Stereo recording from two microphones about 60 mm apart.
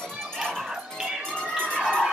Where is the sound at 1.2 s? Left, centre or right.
Centre.